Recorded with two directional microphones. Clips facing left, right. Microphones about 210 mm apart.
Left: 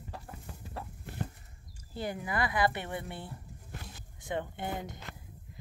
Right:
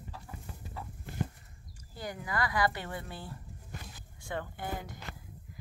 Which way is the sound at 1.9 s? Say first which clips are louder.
Left 2 dB; 25° left (ahead or behind).